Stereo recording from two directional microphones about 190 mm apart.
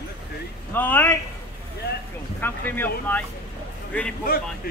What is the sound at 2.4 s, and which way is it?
A man's voice, 10° left (ahead or behind).